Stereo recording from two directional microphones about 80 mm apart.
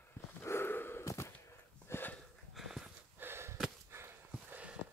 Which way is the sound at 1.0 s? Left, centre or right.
Left.